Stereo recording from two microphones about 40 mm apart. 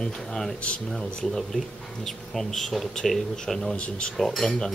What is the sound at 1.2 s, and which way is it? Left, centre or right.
Speech, centre.